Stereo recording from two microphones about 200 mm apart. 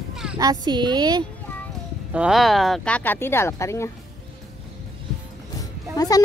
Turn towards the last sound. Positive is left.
turn(degrees=20)  # may be behind; listen again after turning